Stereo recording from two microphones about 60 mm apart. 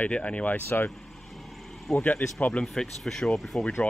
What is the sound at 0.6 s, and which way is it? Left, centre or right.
Speech, left.